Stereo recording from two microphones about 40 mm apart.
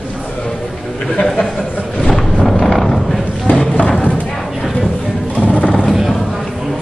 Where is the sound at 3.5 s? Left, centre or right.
Left.